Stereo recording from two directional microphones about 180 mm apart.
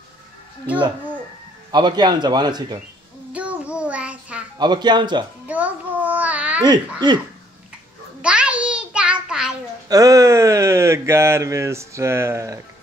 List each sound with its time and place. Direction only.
1.7 s speech: 25° right (ahead or behind)
3.3 s child singing: 5° right (ahead or behind)
4.6 s speech: 25° right (ahead or behind)
5.5 s child singing: 10° right (ahead or behind)
6.6 s speech: 25° right (ahead or behind)
8.2 s a sound: 5° right (ahead or behind)
9.8 s speech: 20° right (ahead or behind)